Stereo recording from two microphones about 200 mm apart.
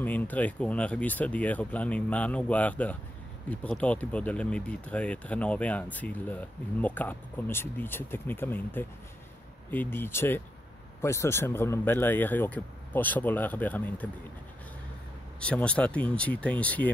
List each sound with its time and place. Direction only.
0.0 s speech: 10° left (ahead or behind)
15.4 s speech: 5° left (ahead or behind)